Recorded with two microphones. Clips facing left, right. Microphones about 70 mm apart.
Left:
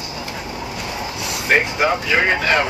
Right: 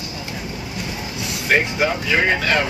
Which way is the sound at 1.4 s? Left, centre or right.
Centre.